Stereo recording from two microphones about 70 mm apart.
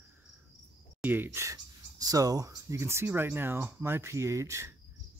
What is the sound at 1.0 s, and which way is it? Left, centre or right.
Speech, right.